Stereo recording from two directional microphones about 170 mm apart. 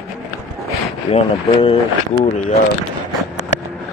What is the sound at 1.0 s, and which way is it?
Speech, 40° left (ahead or behind).